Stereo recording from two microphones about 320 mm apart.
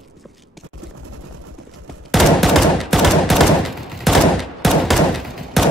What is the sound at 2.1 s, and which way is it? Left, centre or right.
Fusillade, centre.